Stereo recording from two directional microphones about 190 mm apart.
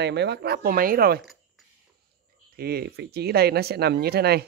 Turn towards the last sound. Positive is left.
turn(degrees=-55)  # may be behind; listen again after turning